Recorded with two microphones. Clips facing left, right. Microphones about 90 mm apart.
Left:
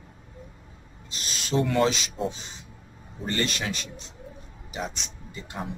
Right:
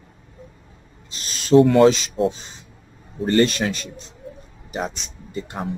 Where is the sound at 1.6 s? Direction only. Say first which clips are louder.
Right 10 dB; 55° right (ahead or behind).